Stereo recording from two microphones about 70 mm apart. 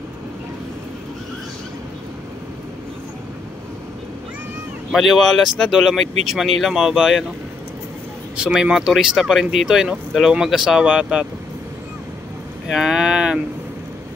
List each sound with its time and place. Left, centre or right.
4.9 s speech: centre
8.4 s speech: centre
12.6 s speech: centre